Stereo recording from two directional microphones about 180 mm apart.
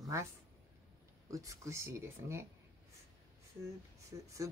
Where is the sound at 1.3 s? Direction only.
20° right (ahead or behind).